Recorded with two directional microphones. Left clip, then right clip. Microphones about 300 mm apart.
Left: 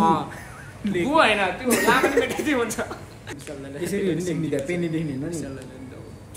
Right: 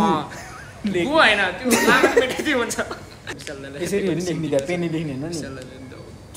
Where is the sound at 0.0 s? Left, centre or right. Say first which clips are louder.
Even; centre.